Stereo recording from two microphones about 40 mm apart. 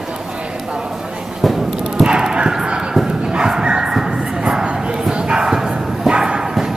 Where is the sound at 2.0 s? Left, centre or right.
Centre.